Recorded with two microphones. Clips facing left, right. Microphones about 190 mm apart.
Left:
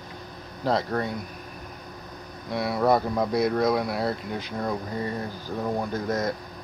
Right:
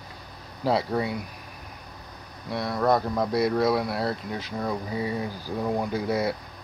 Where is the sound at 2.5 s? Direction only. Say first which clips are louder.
Left 1 dB; 5° left (ahead or behind).